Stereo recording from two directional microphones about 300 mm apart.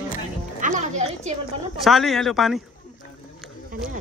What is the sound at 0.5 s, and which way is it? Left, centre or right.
Speech, right.